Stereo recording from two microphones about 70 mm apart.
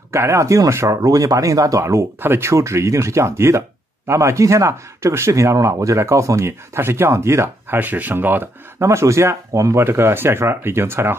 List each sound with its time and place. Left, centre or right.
0.1 s speech: right
2.1 s speech: right
2.5 s speech: right
7.8 s speech: right
8.7 s speech: right
9.8 s speech: right